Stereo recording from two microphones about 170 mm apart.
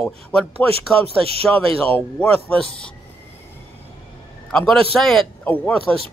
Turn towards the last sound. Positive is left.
turn(degrees=10)  # may be behind; listen again after turning